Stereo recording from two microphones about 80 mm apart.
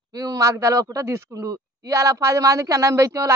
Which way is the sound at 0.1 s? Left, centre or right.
Right.